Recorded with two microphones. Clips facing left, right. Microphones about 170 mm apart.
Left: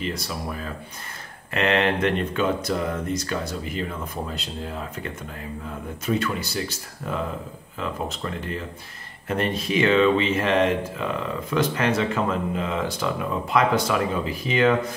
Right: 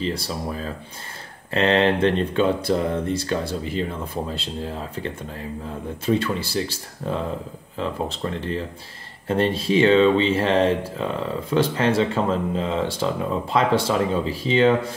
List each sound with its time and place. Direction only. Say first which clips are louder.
0.0 s speech: right 3 dB; 30° right (ahead or behind)